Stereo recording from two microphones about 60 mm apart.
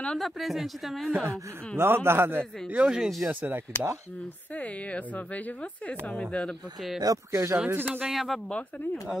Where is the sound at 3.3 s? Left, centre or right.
Right.